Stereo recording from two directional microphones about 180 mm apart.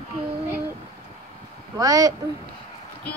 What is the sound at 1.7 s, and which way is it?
Speech, 20° right (ahead or behind).